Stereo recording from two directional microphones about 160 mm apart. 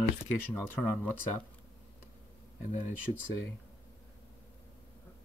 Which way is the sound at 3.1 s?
45° left (ahead or behind).